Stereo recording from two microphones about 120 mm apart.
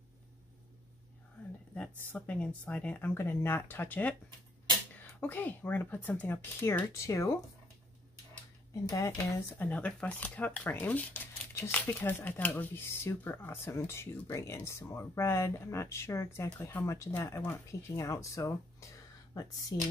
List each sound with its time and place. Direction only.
1.8 s speech: 10° left (ahead or behind)
5.2 s speech: 15° left (ahead or behind)
8.8 s speech: 25° left (ahead or behind)
9.6 s speech: 10° left (ahead or behind); by 19.9 s 30° left (ahead or behind)